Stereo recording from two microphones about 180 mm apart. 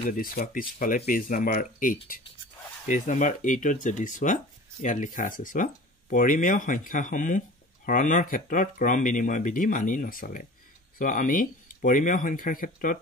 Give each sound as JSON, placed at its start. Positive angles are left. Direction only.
{"t": 0.0, "sound": "speech", "side_deg": 50}